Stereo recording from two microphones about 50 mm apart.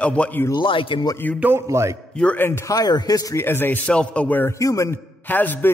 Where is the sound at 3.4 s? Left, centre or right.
Left.